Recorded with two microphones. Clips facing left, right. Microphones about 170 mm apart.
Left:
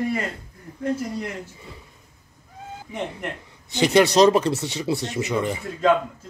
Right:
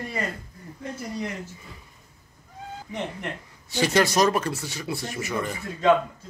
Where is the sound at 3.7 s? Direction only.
20° left (ahead or behind).